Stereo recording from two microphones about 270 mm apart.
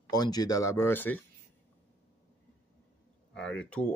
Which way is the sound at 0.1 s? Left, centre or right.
Centre.